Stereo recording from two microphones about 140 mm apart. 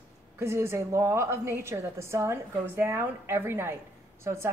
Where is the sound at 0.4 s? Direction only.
20° right (ahead or behind).